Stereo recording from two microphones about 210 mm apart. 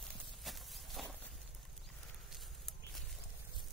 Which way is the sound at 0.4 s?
Centre (ahead or behind).